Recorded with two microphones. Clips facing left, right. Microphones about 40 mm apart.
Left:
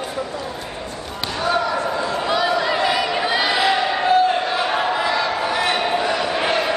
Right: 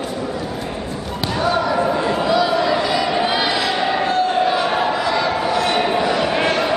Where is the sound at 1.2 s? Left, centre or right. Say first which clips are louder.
Right 2 dB; centre.